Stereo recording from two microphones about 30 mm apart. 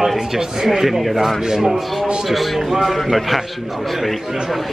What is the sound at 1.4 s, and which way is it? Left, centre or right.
Speech, centre.